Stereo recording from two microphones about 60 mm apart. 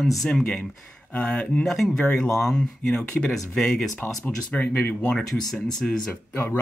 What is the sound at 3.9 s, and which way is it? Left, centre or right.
Speech, left.